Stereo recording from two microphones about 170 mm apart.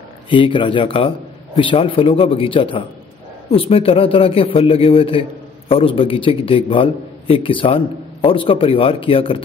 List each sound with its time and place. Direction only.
0.3 s a man's voice: 30° left (ahead or behind)